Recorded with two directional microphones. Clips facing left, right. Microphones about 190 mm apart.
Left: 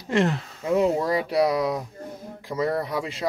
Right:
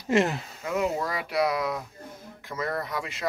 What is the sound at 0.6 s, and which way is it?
Speech, 30° left (ahead or behind).